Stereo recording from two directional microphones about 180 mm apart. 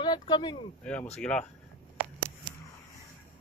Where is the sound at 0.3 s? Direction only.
25° left (ahead or behind).